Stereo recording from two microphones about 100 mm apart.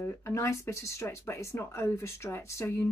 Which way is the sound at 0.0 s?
25° left (ahead or behind).